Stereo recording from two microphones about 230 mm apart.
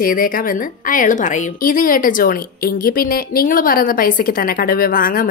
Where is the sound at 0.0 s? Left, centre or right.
Left.